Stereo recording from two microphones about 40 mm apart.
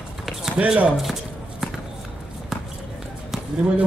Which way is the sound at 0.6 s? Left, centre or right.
Right.